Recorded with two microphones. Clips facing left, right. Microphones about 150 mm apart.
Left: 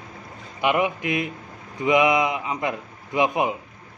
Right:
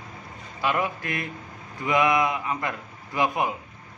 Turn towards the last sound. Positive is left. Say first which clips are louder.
# left 3 dB
turn(degrees=20)  # may be behind; listen again after turning